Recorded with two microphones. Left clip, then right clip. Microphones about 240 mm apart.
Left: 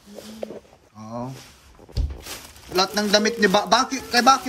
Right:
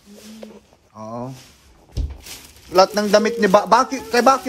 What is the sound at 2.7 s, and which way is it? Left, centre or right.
Speech, centre.